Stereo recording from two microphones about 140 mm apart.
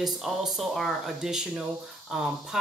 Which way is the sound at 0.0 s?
Centre (ahead or behind).